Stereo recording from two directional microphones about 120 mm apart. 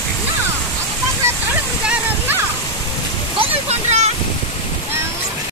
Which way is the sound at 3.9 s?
65° right (ahead or behind).